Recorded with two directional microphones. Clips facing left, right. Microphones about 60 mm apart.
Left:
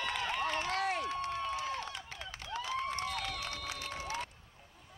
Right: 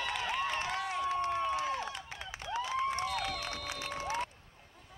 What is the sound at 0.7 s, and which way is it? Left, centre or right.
Crowd, left.